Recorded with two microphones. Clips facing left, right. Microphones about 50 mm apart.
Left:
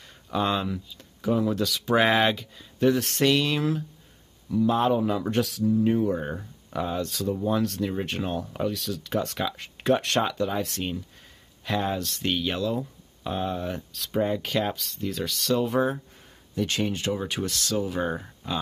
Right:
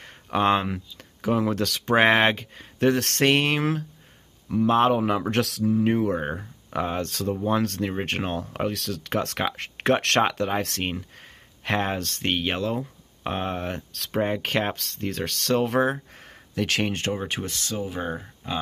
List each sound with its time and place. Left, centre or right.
0.0 s a sound: right
0.9 s speech: right
1.8 s speech: right
3.3 s speech: right
5.3 s speech: right
5.7 s speech: right
17.1 s speech: right; by 18.5 s centre